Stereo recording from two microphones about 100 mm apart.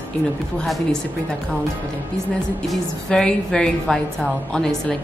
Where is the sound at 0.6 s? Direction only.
Centre (ahead or behind).